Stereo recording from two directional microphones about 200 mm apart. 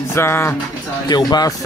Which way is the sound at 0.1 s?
10° left (ahead or behind).